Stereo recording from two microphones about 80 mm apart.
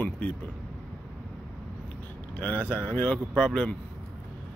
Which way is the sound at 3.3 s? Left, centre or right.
Centre.